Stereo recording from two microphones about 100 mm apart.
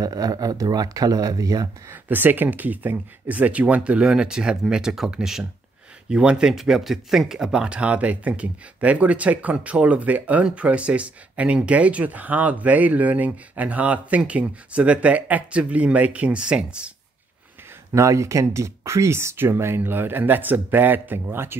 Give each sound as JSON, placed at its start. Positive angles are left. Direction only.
{"t": 0.0, "sound": "speech", "side_deg": -40}
{"t": 1.9, "sound": "speech", "side_deg": -20}
{"t": 17.9, "sound": "speech", "side_deg": -30}